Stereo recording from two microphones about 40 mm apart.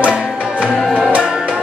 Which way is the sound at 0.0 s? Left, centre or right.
Right.